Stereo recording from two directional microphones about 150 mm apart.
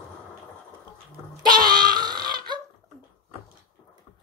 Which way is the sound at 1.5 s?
25° right (ahead or behind).